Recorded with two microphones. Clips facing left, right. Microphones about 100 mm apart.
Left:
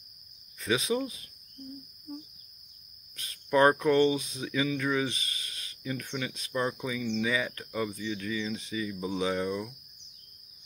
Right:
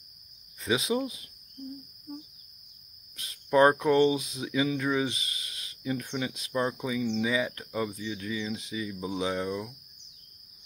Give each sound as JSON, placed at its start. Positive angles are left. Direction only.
{"t": 0.6, "sound": "speech", "side_deg": -15}
{"t": 3.2, "sound": "speech", "side_deg": -10}